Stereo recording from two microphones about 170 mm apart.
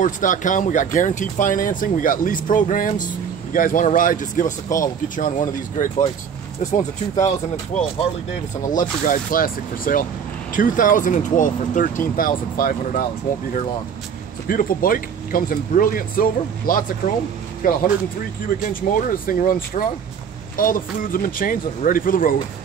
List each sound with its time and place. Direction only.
0.0 s speech: 50° left (ahead or behind)
14.5 s speech: 55° left (ahead or behind)